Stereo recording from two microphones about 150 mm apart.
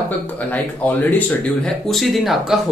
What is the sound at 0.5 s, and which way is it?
Speech, 10° left (ahead or behind).